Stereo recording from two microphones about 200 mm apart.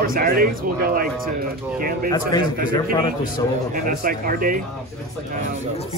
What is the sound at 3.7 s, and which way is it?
Speech, 45° right (ahead or behind).